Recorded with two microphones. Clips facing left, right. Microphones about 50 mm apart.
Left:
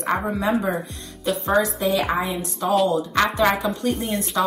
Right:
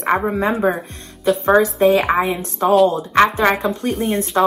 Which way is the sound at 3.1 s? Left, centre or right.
Right.